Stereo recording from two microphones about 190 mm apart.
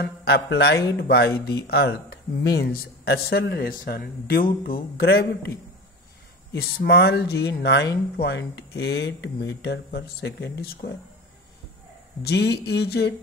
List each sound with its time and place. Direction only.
0.0 s speech: 55° left (ahead or behind)
6.5 s speech: 60° left (ahead or behind)
12.2 s speech: 60° left (ahead or behind)